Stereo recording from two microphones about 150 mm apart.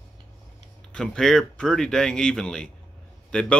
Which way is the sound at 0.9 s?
5° left (ahead or behind).